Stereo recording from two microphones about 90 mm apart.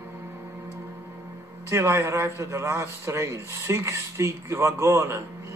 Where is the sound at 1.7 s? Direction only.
30° right (ahead or behind).